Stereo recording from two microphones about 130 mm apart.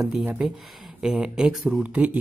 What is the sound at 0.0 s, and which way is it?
Speech, 5° right (ahead or behind).